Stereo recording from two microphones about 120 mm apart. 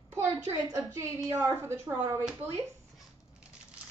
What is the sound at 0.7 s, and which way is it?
A woman's voice, 25° right (ahead or behind).